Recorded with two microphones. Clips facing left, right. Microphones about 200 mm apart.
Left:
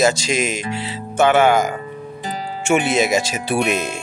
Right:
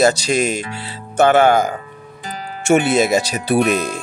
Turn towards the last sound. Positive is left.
turn(degrees=-35)  # may be behind; listen again after turning